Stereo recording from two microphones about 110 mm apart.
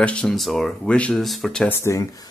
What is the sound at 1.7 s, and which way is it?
Speech, 25° left (ahead or behind).